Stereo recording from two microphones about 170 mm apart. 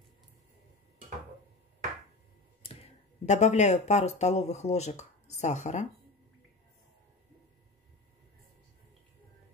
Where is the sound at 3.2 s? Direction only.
40° left (ahead or behind).